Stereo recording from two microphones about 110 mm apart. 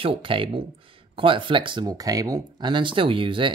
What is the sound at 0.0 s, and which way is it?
Speech, 55° right (ahead or behind).